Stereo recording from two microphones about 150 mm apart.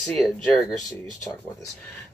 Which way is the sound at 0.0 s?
5° left (ahead or behind).